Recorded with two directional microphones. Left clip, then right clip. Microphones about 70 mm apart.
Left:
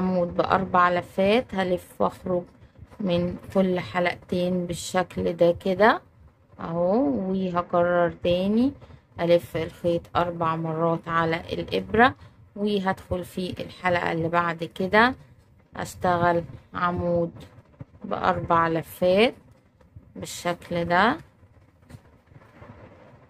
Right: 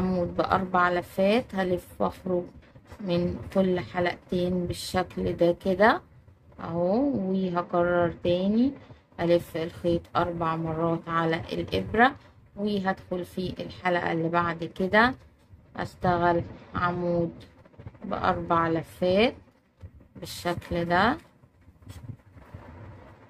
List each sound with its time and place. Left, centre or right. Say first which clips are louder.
0.0 s a woman's voice: left 3 dB; left
1.7 s a woman's voice: left 3 dB; left
20.4 s speech: left 2 dB; left